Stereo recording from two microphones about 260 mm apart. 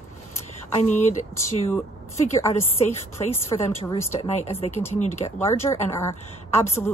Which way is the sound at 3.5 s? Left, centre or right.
Centre.